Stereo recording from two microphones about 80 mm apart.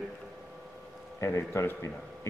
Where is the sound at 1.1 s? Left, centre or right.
Left.